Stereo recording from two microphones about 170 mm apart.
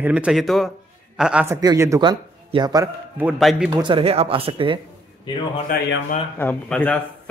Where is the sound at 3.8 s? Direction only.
35° right (ahead or behind).